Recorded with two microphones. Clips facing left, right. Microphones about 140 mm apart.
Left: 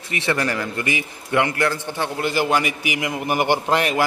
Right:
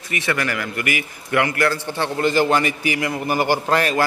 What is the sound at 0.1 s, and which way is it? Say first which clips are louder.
A man's voice: left 1 dB; 25° left (ahead or behind).